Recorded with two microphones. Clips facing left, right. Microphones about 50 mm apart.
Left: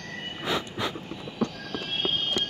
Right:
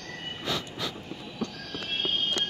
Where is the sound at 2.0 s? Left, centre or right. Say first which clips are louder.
Left 1 dB; centre.